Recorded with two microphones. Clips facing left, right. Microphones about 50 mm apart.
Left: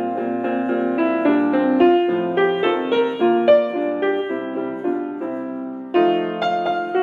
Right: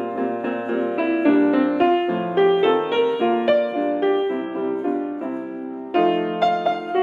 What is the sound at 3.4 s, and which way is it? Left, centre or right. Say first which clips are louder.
Music: left 7 dB; centre.